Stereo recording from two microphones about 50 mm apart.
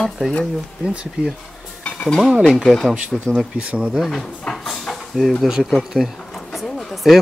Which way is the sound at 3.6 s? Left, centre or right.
Right.